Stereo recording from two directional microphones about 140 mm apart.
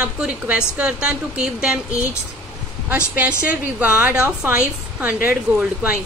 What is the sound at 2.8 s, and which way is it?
A woman's voice, 10° right (ahead or behind).